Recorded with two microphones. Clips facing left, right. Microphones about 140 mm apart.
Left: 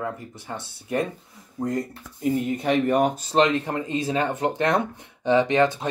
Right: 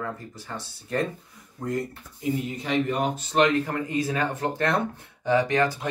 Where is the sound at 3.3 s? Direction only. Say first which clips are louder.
Right 3 dB; 25° left (ahead or behind).